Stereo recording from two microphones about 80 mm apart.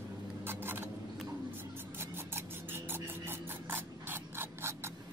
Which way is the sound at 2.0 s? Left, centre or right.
Right.